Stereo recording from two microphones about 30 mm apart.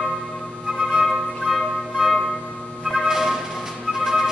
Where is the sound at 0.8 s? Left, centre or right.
Centre.